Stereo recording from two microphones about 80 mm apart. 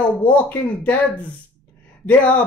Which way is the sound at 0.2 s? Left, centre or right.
Centre.